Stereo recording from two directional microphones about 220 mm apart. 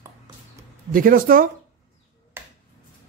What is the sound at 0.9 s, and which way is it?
Speech, 40° right (ahead or behind).